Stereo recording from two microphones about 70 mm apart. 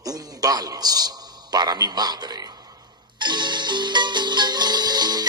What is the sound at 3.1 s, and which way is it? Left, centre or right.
Music, right.